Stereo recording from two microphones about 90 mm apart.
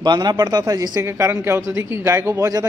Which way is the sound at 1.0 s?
30° right (ahead or behind).